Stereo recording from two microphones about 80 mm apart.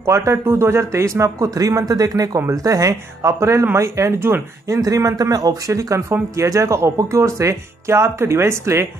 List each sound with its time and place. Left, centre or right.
0.0 s speech: right
4.7 s speech: right